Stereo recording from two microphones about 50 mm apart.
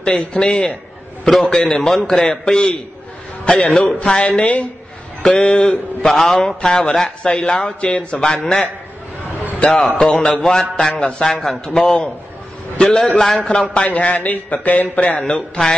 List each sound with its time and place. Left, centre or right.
0.0 s a man's voice: centre
5.2 s a man's voice: centre
6.0 s a man's voice: centre
9.8 s a man's voice: centre
11.3 s a man's voice: centre
13.8 s speech: left